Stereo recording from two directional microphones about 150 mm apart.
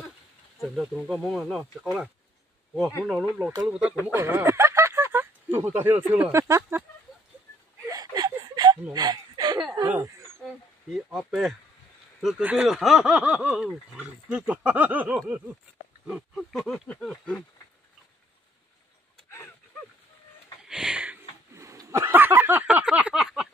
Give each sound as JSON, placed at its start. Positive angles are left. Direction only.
{"t": 0.6, "sound": "speech", "side_deg": 0}
{"t": 4.1, "sound": "speech", "side_deg": -15}
{"t": 7.8, "sound": "a sound", "side_deg": -25}
{"t": 9.8, "sound": "speech", "side_deg": -15}
{"t": 10.9, "sound": "speech", "side_deg": 0}
{"t": 16.1, "sound": "speech", "side_deg": 0}
{"t": 20.6, "sound": "a sound", "side_deg": -5}